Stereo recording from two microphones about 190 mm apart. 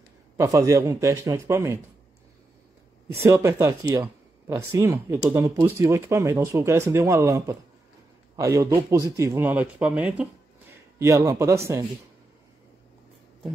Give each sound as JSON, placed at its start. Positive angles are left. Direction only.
{"t": 0.4, "sound": "speech", "side_deg": -15}
{"t": 3.2, "sound": "a man's voice", "side_deg": -15}